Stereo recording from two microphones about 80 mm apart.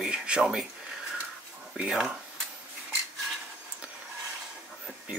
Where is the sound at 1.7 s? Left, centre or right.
Centre.